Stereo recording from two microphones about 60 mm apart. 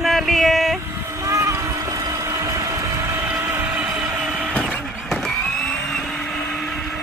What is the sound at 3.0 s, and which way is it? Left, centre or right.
Train, right.